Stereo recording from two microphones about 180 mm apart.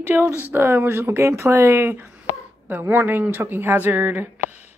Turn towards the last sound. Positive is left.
turn(degrees=-10)  # may be behind; listen again after turning